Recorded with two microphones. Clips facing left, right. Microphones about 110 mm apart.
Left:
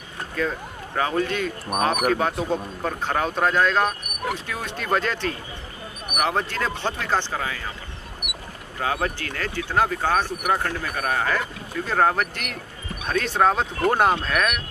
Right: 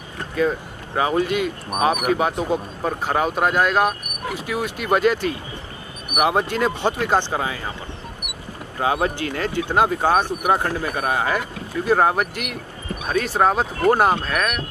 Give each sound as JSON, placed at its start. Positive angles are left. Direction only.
{"t": 0.4, "sound": "speech", "side_deg": -10}
{"t": 8.7, "sound": "speech", "side_deg": -20}